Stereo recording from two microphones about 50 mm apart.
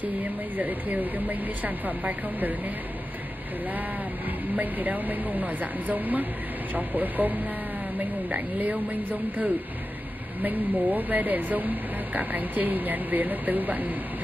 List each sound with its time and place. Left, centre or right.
0.0 s speech: right
4.6 s speech: right